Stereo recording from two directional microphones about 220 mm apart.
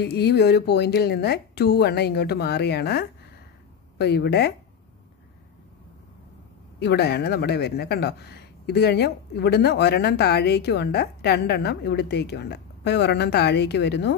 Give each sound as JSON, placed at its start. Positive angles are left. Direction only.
{"t": 0.0, "sound": "speech", "side_deg": 45}
{"t": 6.8, "sound": "speech", "side_deg": 50}